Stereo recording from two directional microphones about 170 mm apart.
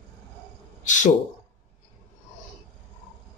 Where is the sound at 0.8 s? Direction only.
45° left (ahead or behind).